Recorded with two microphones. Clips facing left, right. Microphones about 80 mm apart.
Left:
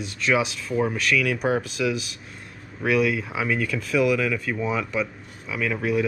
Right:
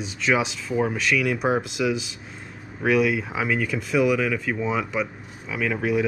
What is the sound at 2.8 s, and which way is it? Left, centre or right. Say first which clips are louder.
Speech: right 1 dB; centre.